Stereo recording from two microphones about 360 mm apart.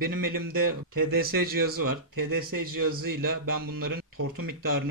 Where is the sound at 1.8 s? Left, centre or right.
Right.